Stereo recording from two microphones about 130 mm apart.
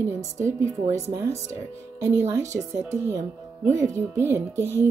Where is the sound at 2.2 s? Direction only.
25° right (ahead or behind).